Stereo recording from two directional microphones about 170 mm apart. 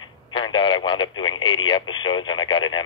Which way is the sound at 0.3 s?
30° left (ahead or behind).